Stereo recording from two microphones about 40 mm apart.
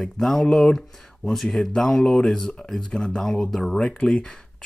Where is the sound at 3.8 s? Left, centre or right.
Left.